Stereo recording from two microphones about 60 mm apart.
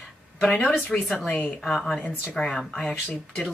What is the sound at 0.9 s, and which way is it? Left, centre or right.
Speech, centre.